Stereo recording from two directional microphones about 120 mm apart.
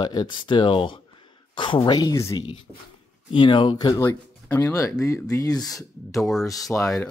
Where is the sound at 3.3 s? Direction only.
45° left (ahead or behind).